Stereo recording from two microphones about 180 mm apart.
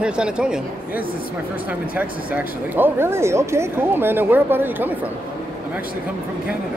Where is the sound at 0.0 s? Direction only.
5° right (ahead or behind).